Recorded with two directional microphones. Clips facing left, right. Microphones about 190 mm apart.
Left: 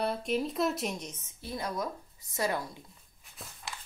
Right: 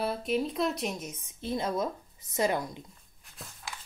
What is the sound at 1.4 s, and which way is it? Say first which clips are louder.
A woman's voice: right 5 dB; 25° right (ahead or behind).